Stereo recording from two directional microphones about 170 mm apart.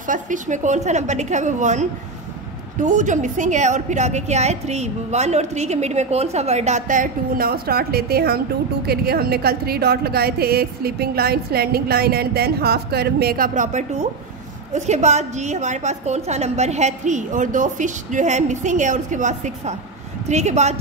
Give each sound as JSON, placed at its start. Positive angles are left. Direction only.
{"t": 0.0, "sound": "a woman's voice", "side_deg": -50}